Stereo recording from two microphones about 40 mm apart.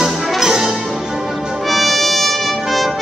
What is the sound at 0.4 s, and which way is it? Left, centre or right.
Music, centre.